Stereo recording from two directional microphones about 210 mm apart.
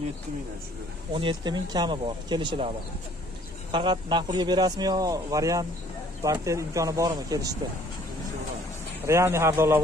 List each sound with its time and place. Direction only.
1.1 s speech: 20° right (ahead or behind)
3.7 s speech: 20° right (ahead or behind)
9.0 s speech: 15° right (ahead or behind)